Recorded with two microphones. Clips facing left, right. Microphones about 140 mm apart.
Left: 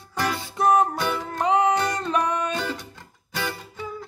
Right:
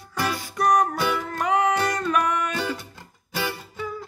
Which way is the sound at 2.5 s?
10° right (ahead or behind).